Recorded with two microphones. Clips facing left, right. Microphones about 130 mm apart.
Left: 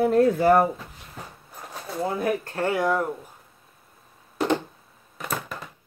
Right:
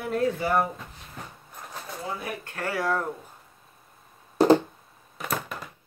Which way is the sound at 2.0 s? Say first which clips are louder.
Left 10 dB; 40° left (ahead or behind).